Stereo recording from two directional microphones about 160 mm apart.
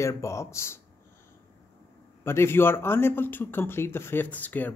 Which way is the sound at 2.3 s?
15° left (ahead or behind).